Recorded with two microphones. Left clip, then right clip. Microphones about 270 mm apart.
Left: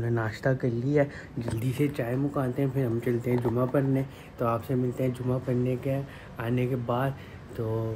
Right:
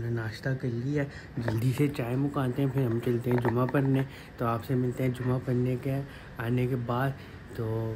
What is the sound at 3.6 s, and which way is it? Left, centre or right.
Speech, centre.